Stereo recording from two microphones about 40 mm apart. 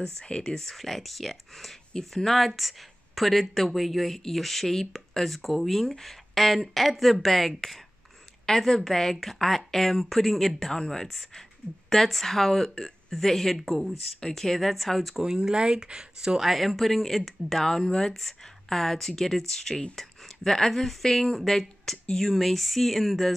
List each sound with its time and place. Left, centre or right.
0.0 s a woman's voice: centre
15.1 s speech: centre
16.3 s a woman's voice: centre